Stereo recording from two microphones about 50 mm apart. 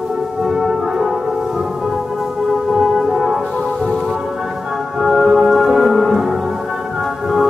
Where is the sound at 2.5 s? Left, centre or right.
Centre.